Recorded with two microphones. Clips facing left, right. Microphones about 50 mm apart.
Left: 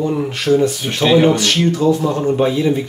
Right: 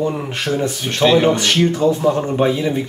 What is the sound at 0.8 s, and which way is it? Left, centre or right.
Speech, centre.